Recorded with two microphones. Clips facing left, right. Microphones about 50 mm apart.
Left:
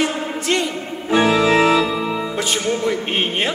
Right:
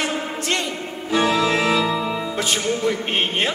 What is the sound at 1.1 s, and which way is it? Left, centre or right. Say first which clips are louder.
Organ: left 4 dB; left.